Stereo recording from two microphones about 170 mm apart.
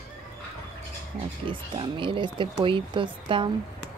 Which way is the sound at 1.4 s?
30° right (ahead or behind).